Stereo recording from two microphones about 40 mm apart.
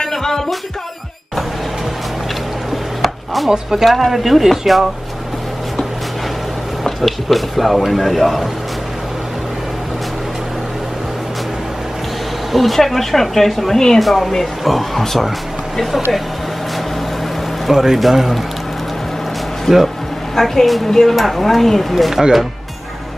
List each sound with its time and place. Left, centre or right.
0.0 s music: centre
3.4 s speech: centre
3.8 s speech: centre
6.8 s speech: centre
12.5 s speech: centre
17.6 s speech: centre
19.7 s a woman's voice: centre